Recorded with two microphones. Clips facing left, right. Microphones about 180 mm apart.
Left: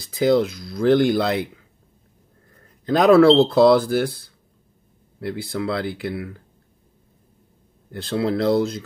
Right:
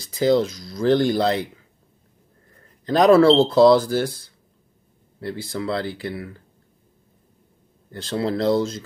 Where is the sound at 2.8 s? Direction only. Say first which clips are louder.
Left 1 dB; 60° left (ahead or behind).